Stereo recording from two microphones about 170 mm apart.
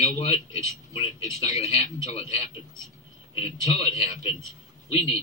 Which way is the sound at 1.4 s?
40° left (ahead or behind).